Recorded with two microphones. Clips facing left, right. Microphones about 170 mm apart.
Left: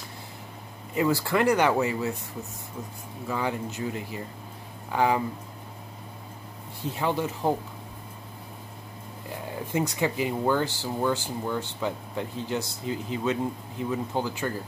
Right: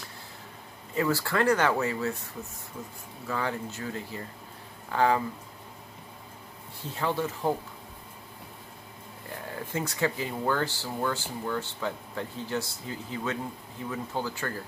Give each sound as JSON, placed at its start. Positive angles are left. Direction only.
{"t": 0.9, "sound": "speech", "side_deg": 15}
{"t": 3.3, "sound": "speech", "side_deg": 15}
{"t": 7.0, "sound": "speech", "side_deg": 15}
{"t": 9.7, "sound": "speech", "side_deg": 15}